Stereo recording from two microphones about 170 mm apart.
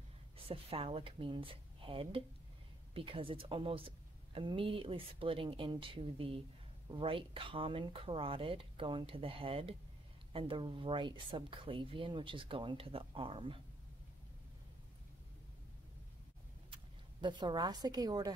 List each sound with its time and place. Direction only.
0.5 s a woman's voice: 35° right (ahead or behind)
16.7 s speech: 30° right (ahead or behind)